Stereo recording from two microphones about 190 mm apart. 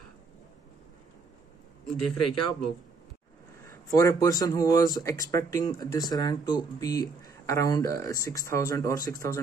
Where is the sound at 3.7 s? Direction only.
15° left (ahead or behind).